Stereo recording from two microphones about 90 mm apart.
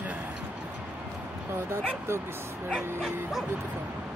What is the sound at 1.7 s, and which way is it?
Speech, 30° right (ahead or behind).